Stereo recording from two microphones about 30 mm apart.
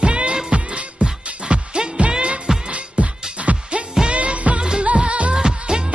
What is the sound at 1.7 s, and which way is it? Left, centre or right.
Music, right.